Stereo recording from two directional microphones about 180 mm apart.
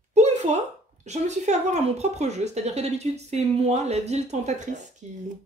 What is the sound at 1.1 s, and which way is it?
A woman's voice, 40° right (ahead or behind).